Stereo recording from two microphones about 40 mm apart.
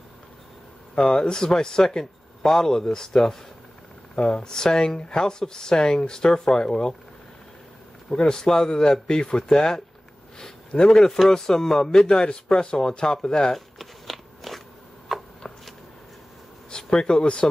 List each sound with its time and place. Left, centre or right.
0.9 s speech: left
8.1 s speech: centre
10.9 s speech: centre
13.6 s biting: centre
15.1 s a sound: centre
16.7 s speech: left